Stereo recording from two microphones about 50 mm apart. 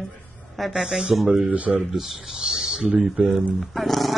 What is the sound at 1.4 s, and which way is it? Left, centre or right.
Speech, right.